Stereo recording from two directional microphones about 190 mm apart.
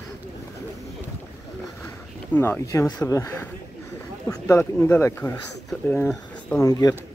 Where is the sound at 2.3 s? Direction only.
10° left (ahead or behind).